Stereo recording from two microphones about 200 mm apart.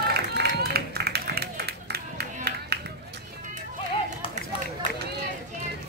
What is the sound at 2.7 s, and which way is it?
Run, 55° right (ahead or behind).